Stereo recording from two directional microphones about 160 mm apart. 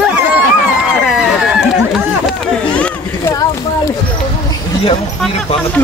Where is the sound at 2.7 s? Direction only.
10° left (ahead or behind).